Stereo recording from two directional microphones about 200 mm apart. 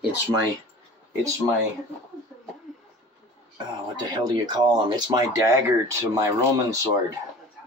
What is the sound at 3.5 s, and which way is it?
Speech, 20° right (ahead or behind).